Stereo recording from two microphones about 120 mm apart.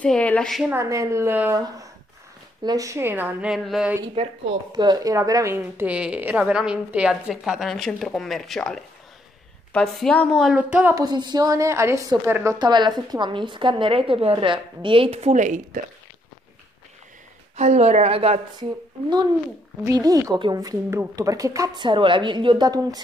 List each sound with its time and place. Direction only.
0.0 s a woman's voice: 10° left (ahead or behind)
0.7 s a woman's voice: 25° right (ahead or behind)
2.6 s a woman's voice: 30° right (ahead or behind)
3.4 s a sound: centre (ahead or behind)
4.7 s a woman's voice: 35° right (ahead or behind); by 10.5 s 5° left (ahead or behind)
10.5 s a woman's voice: 10° right (ahead or behind)
11.0 s a woman's voice: 35° right (ahead or behind)
12.5 s a woman's voice: 40° right (ahead or behind); by 15.6 s 90° right
17.6 s speech: 70° right (ahead or behind)
18.6 s a woman's voice: 35° right (ahead or behind)
21.7 s a woman's voice: 45° right (ahead or behind)
22.7 s a woman's voice: 30° right (ahead or behind)